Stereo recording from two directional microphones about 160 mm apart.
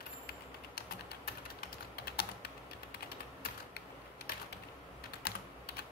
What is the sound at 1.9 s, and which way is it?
Typing, 80° left.